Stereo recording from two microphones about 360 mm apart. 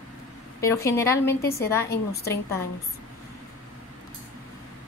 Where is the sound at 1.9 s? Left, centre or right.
Left.